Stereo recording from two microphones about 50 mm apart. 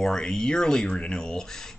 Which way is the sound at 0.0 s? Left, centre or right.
Centre.